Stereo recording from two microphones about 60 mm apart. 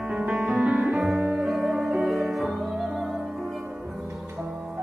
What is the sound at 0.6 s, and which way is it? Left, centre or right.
Music, right.